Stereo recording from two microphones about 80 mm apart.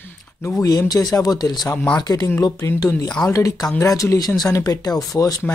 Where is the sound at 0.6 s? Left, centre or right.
Left.